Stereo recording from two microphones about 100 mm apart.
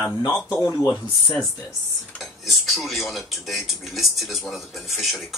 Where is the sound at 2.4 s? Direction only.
Centre (ahead or behind).